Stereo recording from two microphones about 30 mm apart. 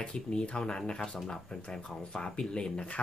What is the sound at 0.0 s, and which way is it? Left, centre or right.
Speech, left.